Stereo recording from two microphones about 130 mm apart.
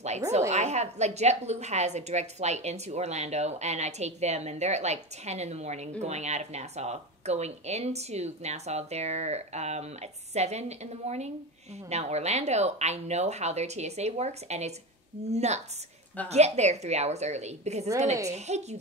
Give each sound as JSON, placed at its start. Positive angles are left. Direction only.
{"t": 0.5, "sound": "a woman's voice", "side_deg": -60}